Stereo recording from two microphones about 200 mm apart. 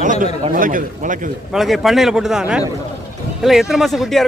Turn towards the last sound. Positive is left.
turn(degrees=0)  # may be behind; listen again after turning